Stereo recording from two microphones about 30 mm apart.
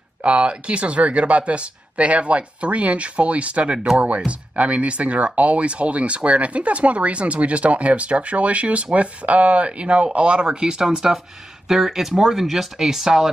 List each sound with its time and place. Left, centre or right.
0.2 s speech: right
10.5 s speech: right